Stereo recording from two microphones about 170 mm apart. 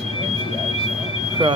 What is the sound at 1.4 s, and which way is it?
Speech, 30° right (ahead or behind).